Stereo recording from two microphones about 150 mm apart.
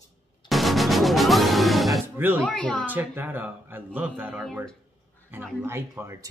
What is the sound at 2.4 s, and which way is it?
Speech, 5° left (ahead or behind).